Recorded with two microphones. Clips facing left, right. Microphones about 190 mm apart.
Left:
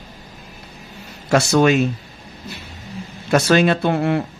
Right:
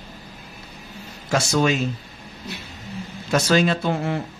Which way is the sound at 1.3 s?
65° left (ahead or behind).